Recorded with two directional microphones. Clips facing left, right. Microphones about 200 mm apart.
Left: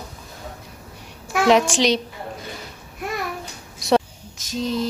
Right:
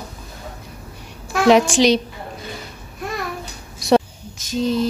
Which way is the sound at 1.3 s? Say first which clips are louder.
Right 3 dB; centre (ahead or behind).